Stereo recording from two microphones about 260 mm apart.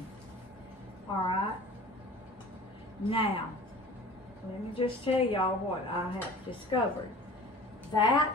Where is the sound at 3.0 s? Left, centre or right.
Left.